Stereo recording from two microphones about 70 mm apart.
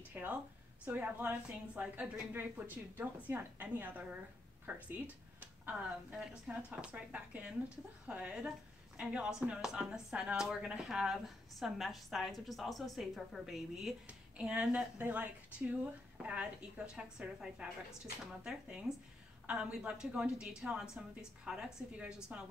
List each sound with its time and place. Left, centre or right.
0.1 s a sound: right
0.8 s a woman's voice: right
2.3 s a woman's voice: right
6.1 s a woman's voice: centre
14.0 s a woman's voice: centre